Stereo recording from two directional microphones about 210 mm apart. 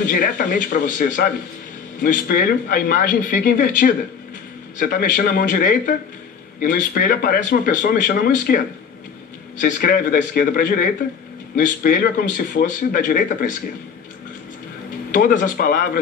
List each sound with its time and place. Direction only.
0.0 s speech: 40° left (ahead or behind)
15.0 s speech: 40° left (ahead or behind)